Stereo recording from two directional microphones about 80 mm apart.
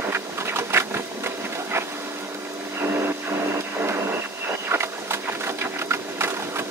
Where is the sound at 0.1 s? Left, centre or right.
Right.